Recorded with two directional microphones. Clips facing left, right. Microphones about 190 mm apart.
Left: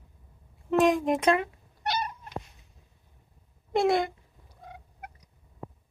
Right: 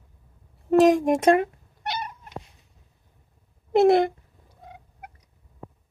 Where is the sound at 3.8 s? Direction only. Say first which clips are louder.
Right 7 dB; 55° right (ahead or behind).